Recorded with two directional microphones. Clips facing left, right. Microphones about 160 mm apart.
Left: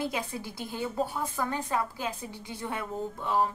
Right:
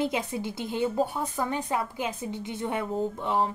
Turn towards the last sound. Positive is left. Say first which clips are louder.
# right 2 dB
turn(degrees=-20)  # may be behind; listen again after turning